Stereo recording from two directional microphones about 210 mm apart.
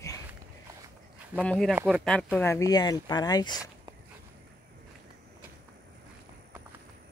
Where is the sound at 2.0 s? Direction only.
5° left (ahead or behind).